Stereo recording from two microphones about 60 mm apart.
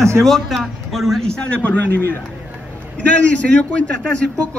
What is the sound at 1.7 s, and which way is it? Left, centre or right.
Speech, left.